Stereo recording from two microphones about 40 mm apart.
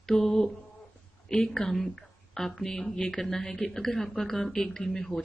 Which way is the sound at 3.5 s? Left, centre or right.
Left.